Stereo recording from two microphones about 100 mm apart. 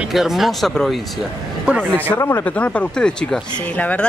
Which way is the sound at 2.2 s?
25° left (ahead or behind).